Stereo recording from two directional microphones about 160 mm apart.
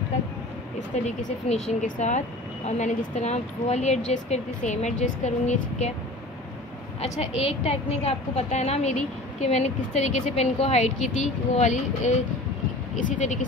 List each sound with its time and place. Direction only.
1.0 s a woman's voice: 45° left (ahead or behind)
7.0 s a woman's voice: 40° left (ahead or behind)